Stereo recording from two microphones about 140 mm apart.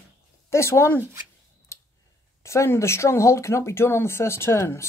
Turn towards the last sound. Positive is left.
turn(degrees=20)  # may be behind; listen again after turning